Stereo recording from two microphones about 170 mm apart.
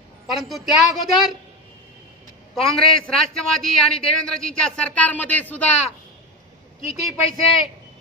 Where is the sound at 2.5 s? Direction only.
Centre (ahead or behind).